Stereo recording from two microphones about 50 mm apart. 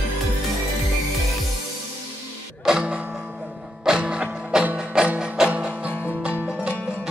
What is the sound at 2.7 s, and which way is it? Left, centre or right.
Music, centre.